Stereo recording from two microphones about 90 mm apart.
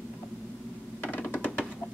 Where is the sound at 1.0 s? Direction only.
20° left (ahead or behind).